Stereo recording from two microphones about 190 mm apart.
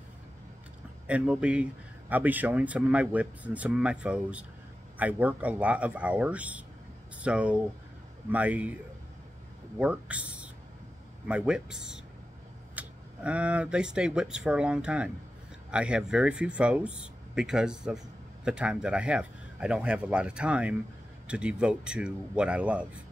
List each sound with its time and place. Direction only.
1.0 s speech: 5° right (ahead or behind)
9.8 s speech: 5° right (ahead or behind)